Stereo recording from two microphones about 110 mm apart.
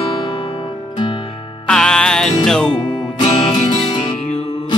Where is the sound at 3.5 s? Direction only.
45° left (ahead or behind).